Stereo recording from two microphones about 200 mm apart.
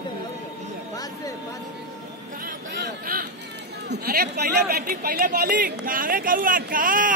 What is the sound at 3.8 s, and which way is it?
Speech, 55° right (ahead or behind).